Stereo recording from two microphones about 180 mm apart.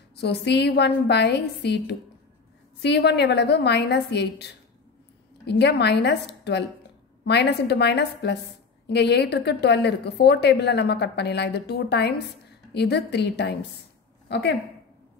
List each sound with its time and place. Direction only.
0.1 s a woman's voice: 65° left (ahead or behind)